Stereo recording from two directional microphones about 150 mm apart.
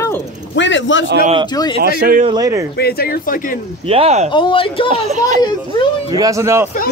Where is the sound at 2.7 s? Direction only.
85° left; by 3.6 s 70° left (ahead or behind).